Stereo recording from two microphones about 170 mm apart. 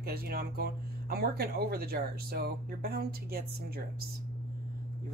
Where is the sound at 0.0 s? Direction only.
65° right (ahead or behind).